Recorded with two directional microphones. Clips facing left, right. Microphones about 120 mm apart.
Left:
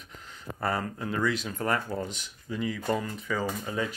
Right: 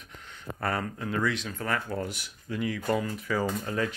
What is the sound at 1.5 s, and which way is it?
Speech, 25° left (ahead or behind).